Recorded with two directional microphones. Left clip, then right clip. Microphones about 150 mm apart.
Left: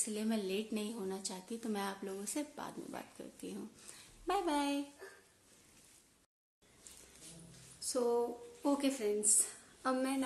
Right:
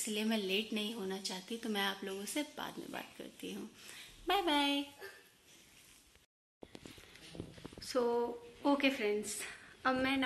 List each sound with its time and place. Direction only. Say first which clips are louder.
0.0 s speech: right 2 dB; centre (ahead or behind)
8.1 s a woman's voice: left 1 dB; 10° left (ahead or behind)